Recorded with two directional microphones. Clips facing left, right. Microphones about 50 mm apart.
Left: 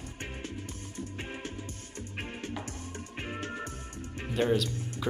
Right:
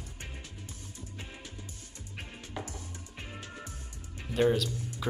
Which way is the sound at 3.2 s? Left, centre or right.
Left.